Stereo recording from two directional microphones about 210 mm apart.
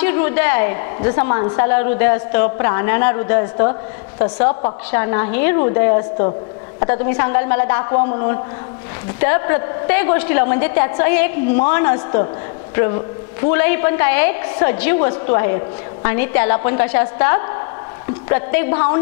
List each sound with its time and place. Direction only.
0.0 s a woman's voice: 15° left (ahead or behind)
4.4 s a woman's voice: 30° left (ahead or behind)
4.9 s a woman's voice: 20° left (ahead or behind)
7.9 s a woman's voice: 25° left (ahead or behind)